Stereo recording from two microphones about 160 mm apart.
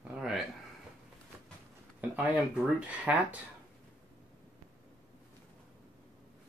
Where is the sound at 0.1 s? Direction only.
10° right (ahead or behind).